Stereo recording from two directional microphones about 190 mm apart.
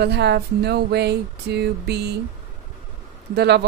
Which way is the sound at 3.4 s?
60° right (ahead or behind).